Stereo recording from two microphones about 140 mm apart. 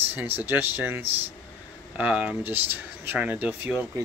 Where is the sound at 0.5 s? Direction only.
15° right (ahead or behind).